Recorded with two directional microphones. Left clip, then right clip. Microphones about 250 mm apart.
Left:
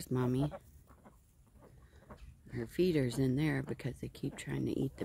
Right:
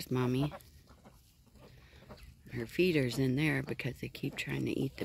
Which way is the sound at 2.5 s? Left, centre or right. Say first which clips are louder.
Right 2 dB; centre.